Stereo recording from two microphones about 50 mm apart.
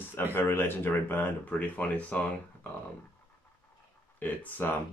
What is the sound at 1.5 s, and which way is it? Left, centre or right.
Speech, left.